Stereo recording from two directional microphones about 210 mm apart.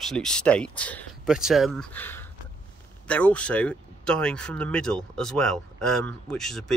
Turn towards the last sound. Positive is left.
turn(degrees=0)  # may be behind; listen again after turning